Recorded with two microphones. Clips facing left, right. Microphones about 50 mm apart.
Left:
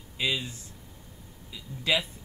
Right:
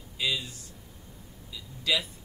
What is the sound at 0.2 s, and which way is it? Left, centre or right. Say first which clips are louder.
Speech: left 1 dB; left.